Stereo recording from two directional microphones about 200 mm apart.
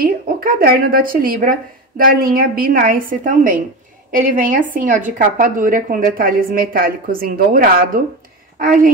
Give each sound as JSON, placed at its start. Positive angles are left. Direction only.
{"t": 0.0, "sound": "speech", "side_deg": -45}